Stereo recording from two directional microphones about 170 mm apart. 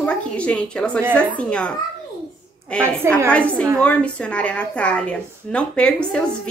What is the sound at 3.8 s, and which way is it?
Speech, 5° left (ahead or behind).